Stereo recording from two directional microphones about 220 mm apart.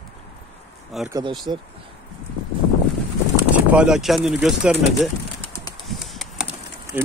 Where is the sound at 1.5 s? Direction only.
20° right (ahead or behind).